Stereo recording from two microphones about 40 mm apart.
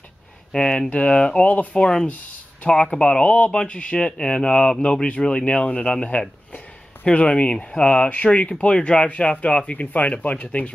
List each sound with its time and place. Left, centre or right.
0.5 s speech: left
1.8 s speech: centre; by 10.7 s left